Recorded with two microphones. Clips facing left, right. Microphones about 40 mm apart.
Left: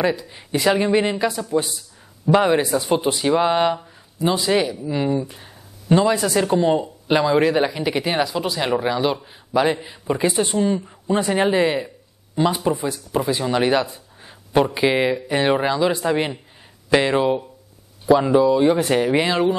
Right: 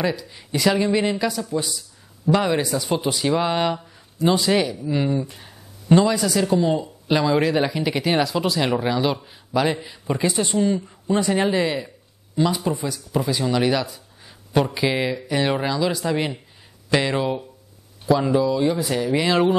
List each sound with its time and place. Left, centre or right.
0.0 s speech: centre
6.0 s speech: left
18.8 s speech: left